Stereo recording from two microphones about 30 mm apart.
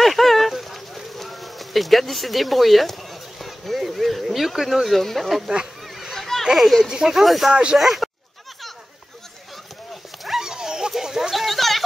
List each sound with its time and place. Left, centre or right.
0.0 s a sound: centre
4.8 s speech: centre
6.1 s children playing: centre
6.4 s a child's voice: centre
6.9 s speech: right
7.2 s speech: centre
10.4 s dog: right
11.0 s a sound: centre
11.3 s a sound: centre